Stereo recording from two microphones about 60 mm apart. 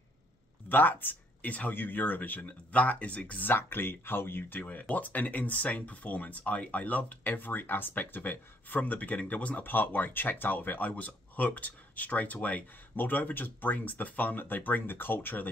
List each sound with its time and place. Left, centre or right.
0.7 s speech: left
3.4 s speech: left